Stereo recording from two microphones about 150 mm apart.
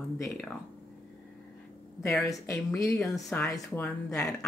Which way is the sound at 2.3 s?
20° left (ahead or behind).